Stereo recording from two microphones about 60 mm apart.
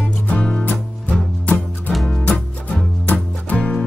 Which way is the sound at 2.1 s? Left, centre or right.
Centre.